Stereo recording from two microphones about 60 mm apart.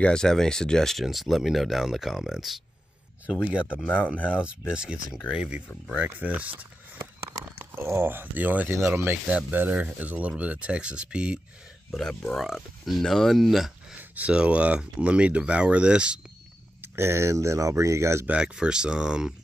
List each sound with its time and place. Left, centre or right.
0.0 s speech: centre
1.0 s speech: centre
3.8 s speech: left
4.3 s speech: centre
7.5 s a sound: right
8.0 s speech: right
8.6 s speech: right
9.5 s speech: right
11.9 s speech: centre
13.9 s a sound: right
14.3 s speech: centre
16.8 s speech: right
18.2 s speech: centre